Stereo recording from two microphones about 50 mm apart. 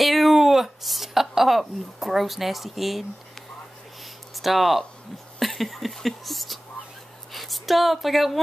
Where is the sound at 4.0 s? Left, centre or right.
Centre.